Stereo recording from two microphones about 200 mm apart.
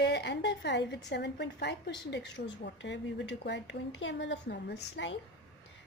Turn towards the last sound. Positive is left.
turn(degrees=65)  # may be behind; listen again after turning